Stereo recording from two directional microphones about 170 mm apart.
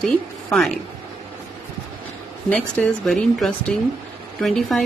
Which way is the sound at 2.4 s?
10° left (ahead or behind).